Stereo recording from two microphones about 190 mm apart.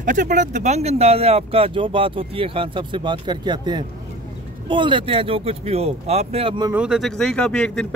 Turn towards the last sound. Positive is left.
turn(degrees=5)  # may be behind; listen again after turning